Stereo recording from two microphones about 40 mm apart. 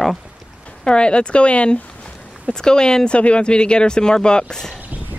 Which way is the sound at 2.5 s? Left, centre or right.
Centre.